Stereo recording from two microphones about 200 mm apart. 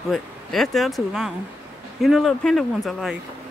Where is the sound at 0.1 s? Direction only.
Centre (ahead or behind).